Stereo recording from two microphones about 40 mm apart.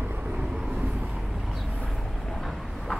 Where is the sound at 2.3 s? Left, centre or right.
Centre.